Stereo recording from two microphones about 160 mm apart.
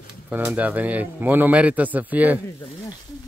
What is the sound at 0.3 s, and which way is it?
A man's voice, 10° right (ahead or behind).